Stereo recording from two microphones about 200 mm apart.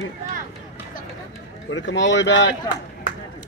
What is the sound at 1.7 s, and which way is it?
Speech, 65° left (ahead or behind).